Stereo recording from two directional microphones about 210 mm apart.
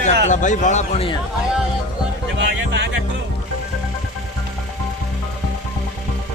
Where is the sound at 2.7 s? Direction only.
55° right (ahead or behind).